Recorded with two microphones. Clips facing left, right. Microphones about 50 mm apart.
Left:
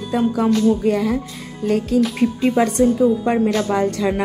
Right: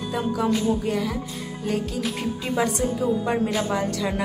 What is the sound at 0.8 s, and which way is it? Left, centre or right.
A woman's voice, left.